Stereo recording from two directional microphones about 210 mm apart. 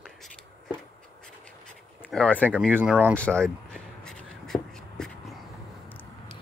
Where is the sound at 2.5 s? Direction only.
10° right (ahead or behind).